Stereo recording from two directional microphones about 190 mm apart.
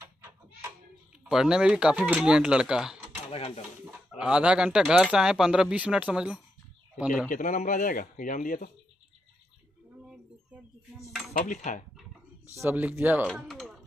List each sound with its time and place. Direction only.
1.2 s speech: 5° right (ahead or behind)
3.3 s cutlery: 30° left (ahead or behind)
3.8 s speech: 5° right (ahead or behind)
7.2 s speech: 40° left (ahead or behind)
11.3 s cutlery: 40° left (ahead or behind)
12.5 s speech: 10° right (ahead or behind)
13.4 s music: centre (ahead or behind)